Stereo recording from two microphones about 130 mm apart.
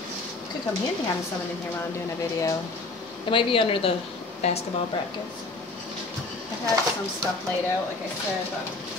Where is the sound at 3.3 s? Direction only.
40° left (ahead or behind).